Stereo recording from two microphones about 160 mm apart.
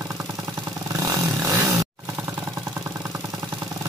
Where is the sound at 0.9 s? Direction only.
20° right (ahead or behind).